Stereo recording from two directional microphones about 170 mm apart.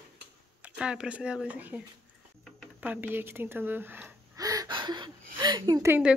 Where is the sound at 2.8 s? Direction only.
10° right (ahead or behind).